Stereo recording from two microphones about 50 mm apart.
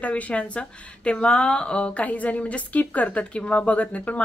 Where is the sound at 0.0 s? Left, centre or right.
Left.